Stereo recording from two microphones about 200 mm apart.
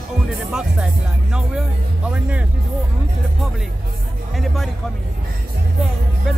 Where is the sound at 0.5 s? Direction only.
5° right (ahead or behind).